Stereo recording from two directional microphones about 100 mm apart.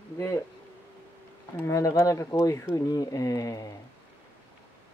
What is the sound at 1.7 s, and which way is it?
Speech, 30° left (ahead or behind).